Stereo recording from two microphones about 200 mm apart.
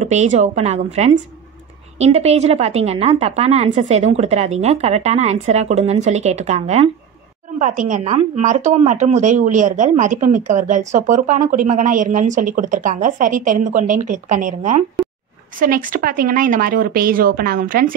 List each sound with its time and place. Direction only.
0.0 s a woman's voice: 35° right (ahead or behind)
2.0 s a woman's voice: 30° right (ahead or behind)